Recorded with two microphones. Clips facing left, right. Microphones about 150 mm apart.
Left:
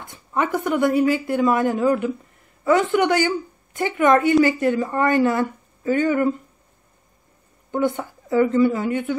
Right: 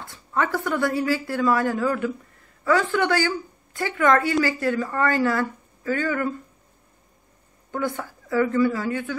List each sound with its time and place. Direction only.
0.0 s a woman's voice: 20° left (ahead or behind)
7.7 s a woman's voice: 20° left (ahead or behind)